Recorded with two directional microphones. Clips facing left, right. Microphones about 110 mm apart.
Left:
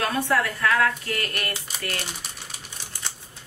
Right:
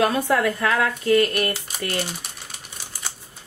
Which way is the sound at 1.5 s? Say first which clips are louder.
Right 4 dB; 35° right (ahead or behind).